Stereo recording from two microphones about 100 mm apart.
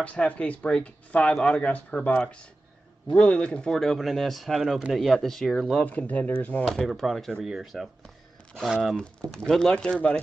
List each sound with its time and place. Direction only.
0.0 s speech: 15° left (ahead or behind)
5.9 s speech: 15° left (ahead or behind)
6.6 s speech: 5° left (ahead or behind)